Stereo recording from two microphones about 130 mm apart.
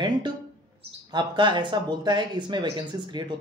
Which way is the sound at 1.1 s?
35° right (ahead or behind).